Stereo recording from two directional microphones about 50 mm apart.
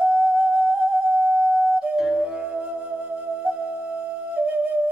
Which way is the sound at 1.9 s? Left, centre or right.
Centre.